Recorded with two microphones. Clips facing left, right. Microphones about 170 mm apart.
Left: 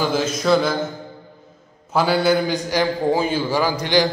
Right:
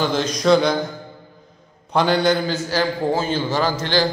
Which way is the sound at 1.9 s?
5° left (ahead or behind).